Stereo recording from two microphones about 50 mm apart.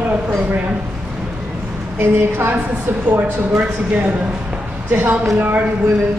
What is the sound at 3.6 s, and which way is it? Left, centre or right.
Speech, right.